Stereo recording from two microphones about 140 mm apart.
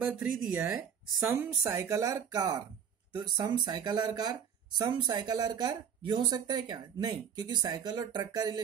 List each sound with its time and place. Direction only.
0.0 s speech: 10° right (ahead or behind)
1.6 s speech: 20° right (ahead or behind)